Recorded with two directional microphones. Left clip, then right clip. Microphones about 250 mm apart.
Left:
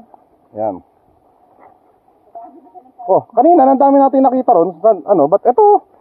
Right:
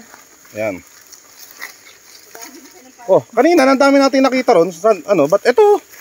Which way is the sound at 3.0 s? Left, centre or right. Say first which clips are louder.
Left 2 dB; right.